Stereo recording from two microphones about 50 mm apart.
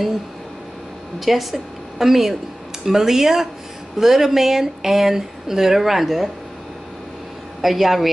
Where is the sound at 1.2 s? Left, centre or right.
Centre.